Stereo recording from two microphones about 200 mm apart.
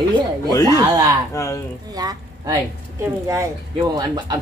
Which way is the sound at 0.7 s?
15° right (ahead or behind).